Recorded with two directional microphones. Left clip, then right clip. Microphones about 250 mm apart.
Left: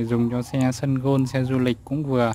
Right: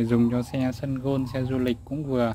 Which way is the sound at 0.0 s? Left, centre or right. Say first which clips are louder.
Even; centre.